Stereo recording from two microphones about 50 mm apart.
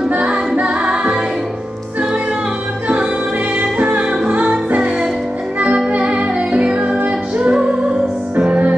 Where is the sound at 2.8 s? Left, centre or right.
Right.